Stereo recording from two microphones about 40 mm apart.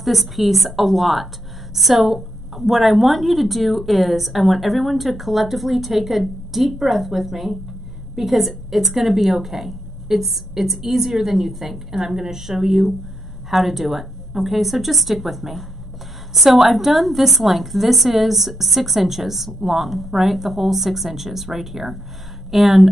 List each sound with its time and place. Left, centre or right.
0.0 s a woman's voice: centre